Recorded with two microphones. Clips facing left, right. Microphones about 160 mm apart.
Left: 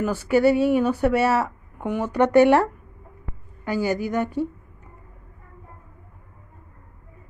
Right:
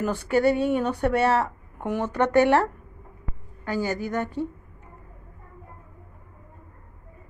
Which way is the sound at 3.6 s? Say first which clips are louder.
Left 3 dB; 15° left (ahead or behind).